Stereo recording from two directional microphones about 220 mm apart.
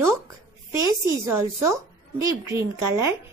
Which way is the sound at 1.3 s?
15° right (ahead or behind).